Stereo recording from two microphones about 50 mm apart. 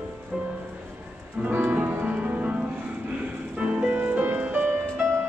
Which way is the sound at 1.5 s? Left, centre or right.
Right.